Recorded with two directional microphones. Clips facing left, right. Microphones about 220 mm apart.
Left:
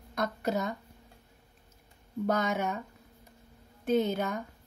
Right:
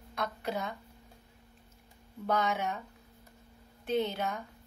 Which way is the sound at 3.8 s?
45° left (ahead or behind).